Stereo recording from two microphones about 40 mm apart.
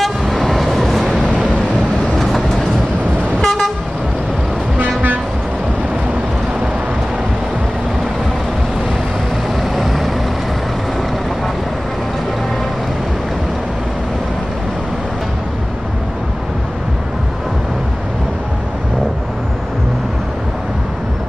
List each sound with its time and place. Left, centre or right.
0.0 s vehicle: centre
2.1 s vehicle: centre
3.3 s toot: centre
4.7 s vehicle: right
9.6 s vehicle: centre